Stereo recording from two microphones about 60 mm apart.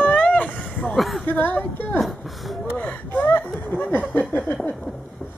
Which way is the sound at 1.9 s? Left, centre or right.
Centre.